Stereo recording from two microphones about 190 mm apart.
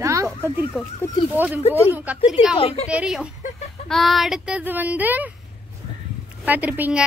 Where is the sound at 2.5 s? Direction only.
30° left (ahead or behind).